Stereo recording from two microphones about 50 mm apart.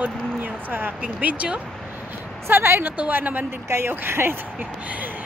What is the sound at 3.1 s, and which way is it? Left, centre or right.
Speech, right.